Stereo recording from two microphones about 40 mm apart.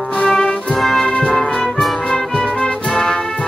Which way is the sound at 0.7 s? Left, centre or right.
Centre.